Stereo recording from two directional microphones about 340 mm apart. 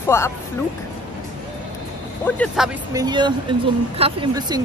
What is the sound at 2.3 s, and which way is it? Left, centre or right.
Speech, centre.